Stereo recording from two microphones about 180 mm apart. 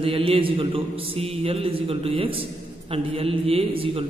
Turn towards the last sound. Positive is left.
turn(degrees=-30)  # may be behind; listen again after turning